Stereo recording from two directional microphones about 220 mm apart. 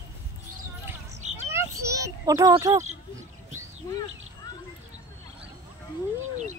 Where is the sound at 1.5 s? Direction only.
15° right (ahead or behind).